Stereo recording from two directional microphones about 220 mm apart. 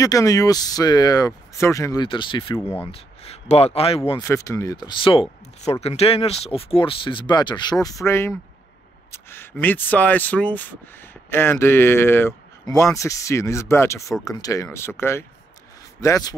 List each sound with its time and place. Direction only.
0.0 s speech: 15° left (ahead or behind)
4.2 s speech: 15° left (ahead or behind)